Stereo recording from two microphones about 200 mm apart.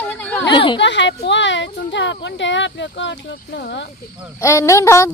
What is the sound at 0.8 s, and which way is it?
Speech, 60° left (ahead or behind).